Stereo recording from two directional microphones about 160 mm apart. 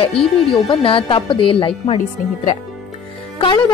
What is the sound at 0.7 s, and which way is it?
Speech, 35° left (ahead or behind).